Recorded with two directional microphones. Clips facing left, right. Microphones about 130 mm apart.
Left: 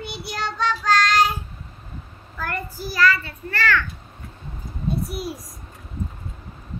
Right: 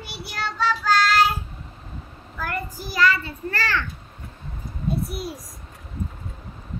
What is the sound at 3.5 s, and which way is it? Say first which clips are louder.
Speech: left 4 dB; 35° right (ahead or behind).